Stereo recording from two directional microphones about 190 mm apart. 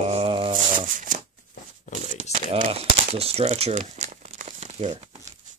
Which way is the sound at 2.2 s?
40° right (ahead or behind).